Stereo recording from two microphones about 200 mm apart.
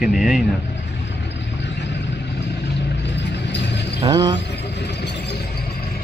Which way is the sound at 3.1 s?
60° left (ahead or behind).